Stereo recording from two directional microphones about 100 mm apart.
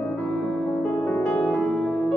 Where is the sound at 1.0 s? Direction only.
15° left (ahead or behind).